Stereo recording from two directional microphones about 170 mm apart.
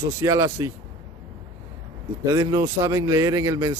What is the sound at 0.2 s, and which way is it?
Speech, 20° right (ahead or behind).